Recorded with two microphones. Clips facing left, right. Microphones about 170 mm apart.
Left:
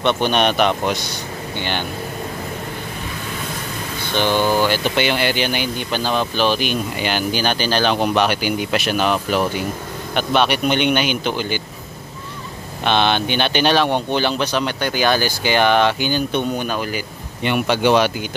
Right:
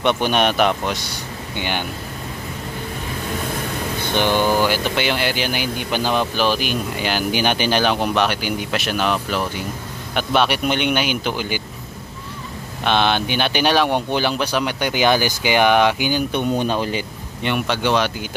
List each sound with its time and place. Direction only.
0.0 s speech: 10° right (ahead or behind)
4.1 s speech: 15° right (ahead or behind)
7.2 s speech: 15° right (ahead or behind)
7.9 s speech: centre (ahead or behind)
12.8 s speech: 5° right (ahead or behind)
16.5 s speech: 30° right (ahead or behind)
17.4 s speech: 5° left (ahead or behind)